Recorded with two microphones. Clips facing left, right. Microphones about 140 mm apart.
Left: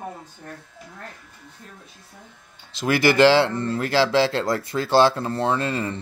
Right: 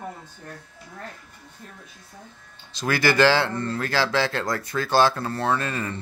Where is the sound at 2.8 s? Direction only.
25° left (ahead or behind).